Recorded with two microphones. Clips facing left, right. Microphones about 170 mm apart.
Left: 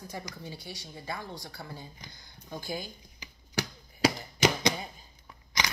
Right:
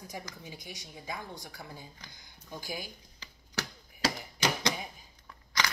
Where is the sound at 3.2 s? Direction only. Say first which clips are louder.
Left 5 dB; 15° left (ahead or behind).